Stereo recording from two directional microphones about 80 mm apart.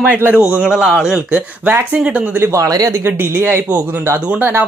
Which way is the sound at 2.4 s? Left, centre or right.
Right.